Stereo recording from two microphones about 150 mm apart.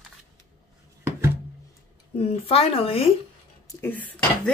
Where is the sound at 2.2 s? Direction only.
40° left (ahead or behind).